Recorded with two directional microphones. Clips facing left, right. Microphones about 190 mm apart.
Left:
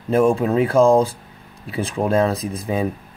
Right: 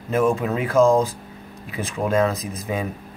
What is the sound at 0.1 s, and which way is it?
Speech, 30° left (ahead or behind).